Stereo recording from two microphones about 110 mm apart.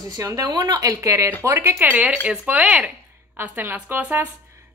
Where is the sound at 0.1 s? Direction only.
30° right (ahead or behind).